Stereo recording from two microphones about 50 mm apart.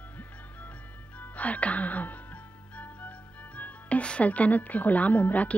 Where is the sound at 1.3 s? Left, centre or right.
Left.